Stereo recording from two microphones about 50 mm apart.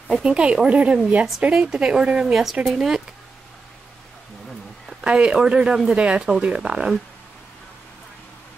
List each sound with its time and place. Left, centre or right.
0.2 s speech: centre
2.6 s speech: centre
5.0 s speech: right